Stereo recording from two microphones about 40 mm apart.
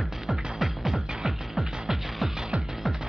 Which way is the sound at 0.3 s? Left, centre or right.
Centre.